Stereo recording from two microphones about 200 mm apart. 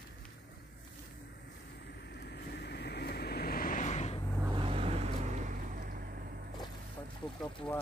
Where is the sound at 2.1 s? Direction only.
55° left (ahead or behind); by 4.2 s 35° left (ahead or behind).